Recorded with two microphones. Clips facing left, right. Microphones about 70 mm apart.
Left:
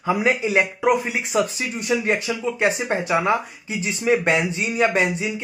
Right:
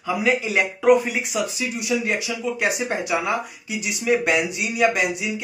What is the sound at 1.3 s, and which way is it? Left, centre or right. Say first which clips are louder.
Speech: left 3 dB; left.